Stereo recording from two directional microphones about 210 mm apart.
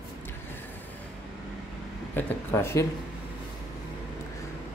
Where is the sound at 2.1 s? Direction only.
15° left (ahead or behind).